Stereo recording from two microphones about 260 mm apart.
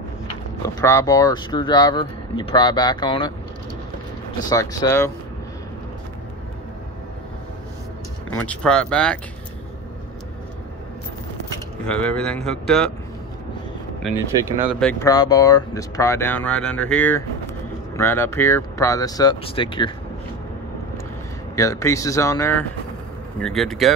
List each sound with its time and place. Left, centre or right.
0.6 s speech: centre
4.5 s speech: centre
8.4 s speech: centre
11.8 s speech: centre
14.8 s speech: centre
21.5 s speech: centre